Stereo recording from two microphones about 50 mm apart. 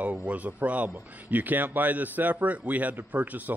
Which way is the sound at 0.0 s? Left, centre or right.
Right.